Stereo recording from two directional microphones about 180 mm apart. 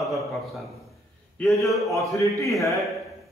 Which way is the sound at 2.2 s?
15° left (ahead or behind).